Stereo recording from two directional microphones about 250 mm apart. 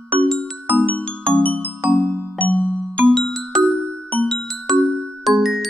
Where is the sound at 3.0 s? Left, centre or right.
Centre.